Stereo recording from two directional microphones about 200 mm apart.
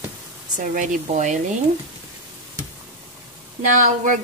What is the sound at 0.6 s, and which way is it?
Speech, 40° right (ahead or behind).